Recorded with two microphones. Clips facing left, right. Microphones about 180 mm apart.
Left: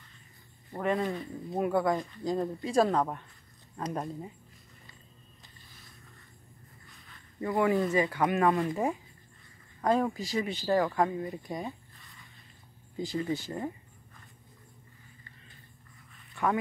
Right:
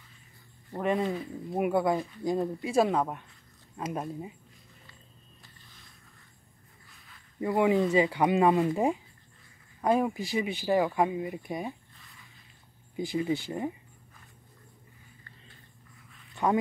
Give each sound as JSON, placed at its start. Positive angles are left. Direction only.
{"t": 0.7, "sound": "speech", "side_deg": -15}
{"t": 1.1, "sound": "speech", "side_deg": -5}
{"t": 7.3, "sound": "speech", "side_deg": -15}
{"t": 13.1, "sound": "speech", "side_deg": -15}